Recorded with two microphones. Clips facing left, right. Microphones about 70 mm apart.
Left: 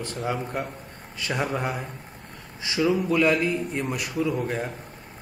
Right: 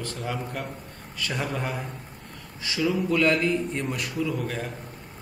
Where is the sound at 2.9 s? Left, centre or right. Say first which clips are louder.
Left 1 dB; centre.